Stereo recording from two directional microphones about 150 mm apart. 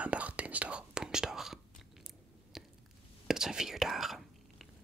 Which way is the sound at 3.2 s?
5° right (ahead or behind).